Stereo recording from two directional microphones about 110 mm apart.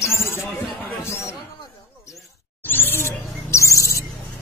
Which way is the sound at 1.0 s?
25° left (ahead or behind).